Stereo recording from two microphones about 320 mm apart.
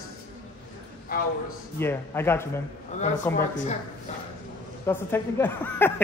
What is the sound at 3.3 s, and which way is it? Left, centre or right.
Speech, left.